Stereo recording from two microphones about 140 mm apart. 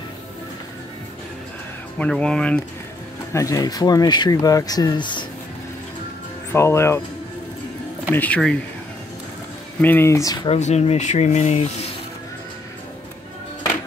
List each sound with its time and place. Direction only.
2.0 s speech: 5° left (ahead or behind)
3.3 s speech: 25° left (ahead or behind)
6.5 s speech: 20° left (ahead or behind)
8.1 s speech: 10° left (ahead or behind)
9.8 s speech: 15° left (ahead or behind)
10.3 s speech: 35° left (ahead or behind)
10.6 s speech: 50° left (ahead or behind)